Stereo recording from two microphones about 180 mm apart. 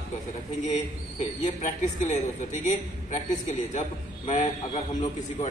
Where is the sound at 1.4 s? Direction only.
40° left (ahead or behind).